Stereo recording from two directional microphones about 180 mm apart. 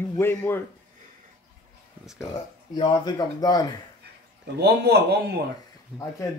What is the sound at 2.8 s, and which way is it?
Speech, 25° left (ahead or behind).